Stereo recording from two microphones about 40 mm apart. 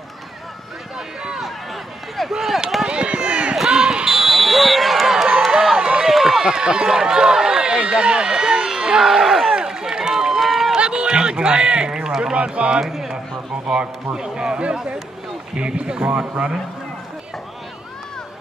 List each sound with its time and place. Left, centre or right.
0.9 s run: centre
2.3 s speech: centre
2.9 s run: right
3.7 s basketball bounce: centre
4.1 s a sound: centre
5.1 s a sound: centre
6.0 s run: centre
6.4 s speech: centre
9.5 s run: centre
10.4 s run: centre
10.8 s a man's voice: right
12.8 s speech: centre
14.1 s speech: right